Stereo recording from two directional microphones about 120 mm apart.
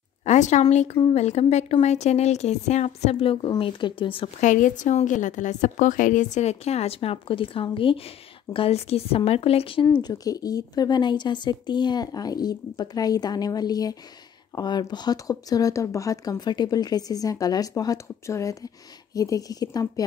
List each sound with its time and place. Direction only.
0.2 s speech: 75° left (ahead or behind); by 4.3 s 45° left (ahead or behind)
4.4 s a woman's voice: 90° left; by 9.8 s 50° left (ahead or behind)
10.0 s speech: 30° left (ahead or behind)